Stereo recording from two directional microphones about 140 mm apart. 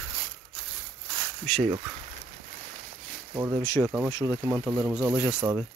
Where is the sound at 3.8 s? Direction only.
10° right (ahead or behind).